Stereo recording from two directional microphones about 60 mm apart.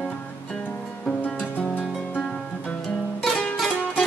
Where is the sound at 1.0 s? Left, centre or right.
Left.